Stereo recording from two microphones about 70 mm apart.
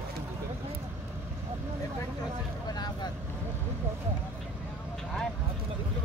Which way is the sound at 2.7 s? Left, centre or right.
Left.